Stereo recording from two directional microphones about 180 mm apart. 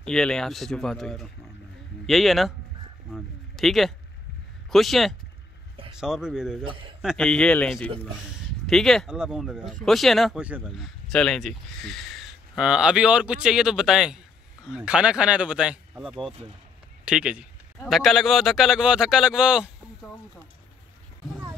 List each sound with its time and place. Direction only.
0.0 s speech: 5° left (ahead or behind)
3.1 s a sound: centre (ahead or behind)
4.6 s speech: centre (ahead or behind)
6.6 s a man's voice: 30° right (ahead or behind)
7.0 s speech: centre (ahead or behind)
20.0 s speech: 15° left (ahead or behind)